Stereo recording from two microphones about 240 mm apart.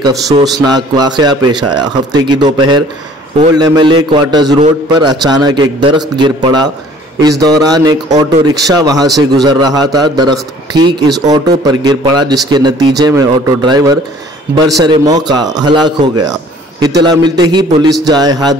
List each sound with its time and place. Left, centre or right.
0.1 s speech: centre
3.5 s speech: centre